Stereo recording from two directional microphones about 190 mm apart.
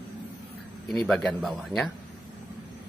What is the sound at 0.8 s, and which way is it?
Speech, centre (ahead or behind).